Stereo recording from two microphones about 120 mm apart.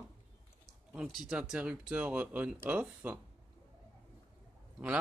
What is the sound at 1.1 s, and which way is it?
Speech, 5° right (ahead or behind).